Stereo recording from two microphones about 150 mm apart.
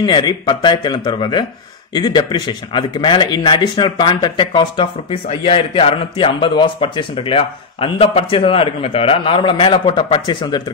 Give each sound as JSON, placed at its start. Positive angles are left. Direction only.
{"t": 0.0, "sound": "speech", "side_deg": 30}